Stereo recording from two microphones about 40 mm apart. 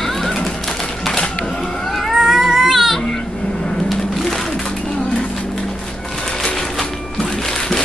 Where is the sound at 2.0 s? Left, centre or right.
Centre.